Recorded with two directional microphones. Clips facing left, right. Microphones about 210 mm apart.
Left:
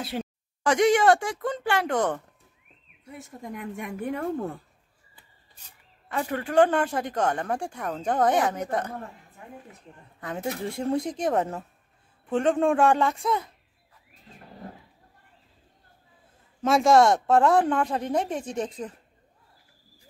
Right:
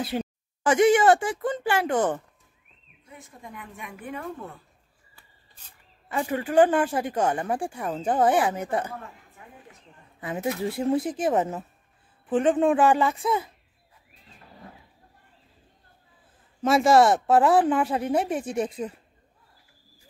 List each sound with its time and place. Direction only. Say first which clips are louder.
0.0 s speech: right 3 dB; centre (ahead or behind)
3.8 s speech: left 6 dB; 45° left (ahead or behind)
6.0 s speech: right 2 dB; 5° right (ahead or behind)
10.2 s speech: right 3 dB; 5° right (ahead or behind)
16.6 s speech: even; 5° right (ahead or behind)